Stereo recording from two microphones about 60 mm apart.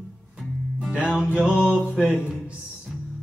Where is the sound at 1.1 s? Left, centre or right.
Centre.